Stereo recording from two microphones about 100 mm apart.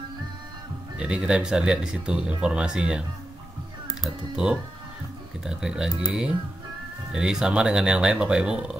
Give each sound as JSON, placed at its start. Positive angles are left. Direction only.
{"t": 0.9, "sound": "speech", "side_deg": -10}
{"t": 7.1, "sound": "speech", "side_deg": -5}